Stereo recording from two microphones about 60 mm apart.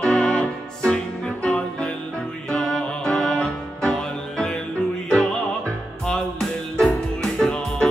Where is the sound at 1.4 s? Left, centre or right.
Centre.